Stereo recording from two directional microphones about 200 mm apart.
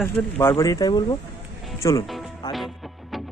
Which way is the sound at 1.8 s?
20° left (ahead or behind).